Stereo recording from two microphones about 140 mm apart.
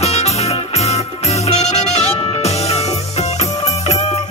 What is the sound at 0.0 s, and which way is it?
Music, 50° left (ahead or behind).